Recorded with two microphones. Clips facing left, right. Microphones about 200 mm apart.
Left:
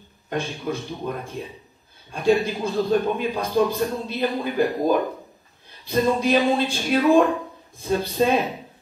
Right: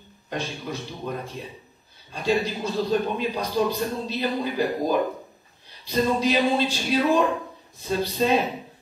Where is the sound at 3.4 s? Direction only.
50° left (ahead or behind).